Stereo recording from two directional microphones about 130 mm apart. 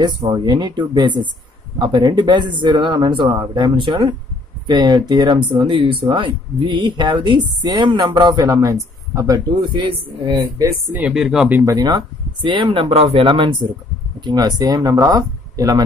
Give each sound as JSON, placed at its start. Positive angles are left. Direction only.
{"t": 0.0, "sound": "speech", "side_deg": -35}
{"t": 10.9, "sound": "speech", "side_deg": -10}
{"t": 11.6, "sound": "speech", "side_deg": -30}
{"t": 12.7, "sound": "speech", "side_deg": -45}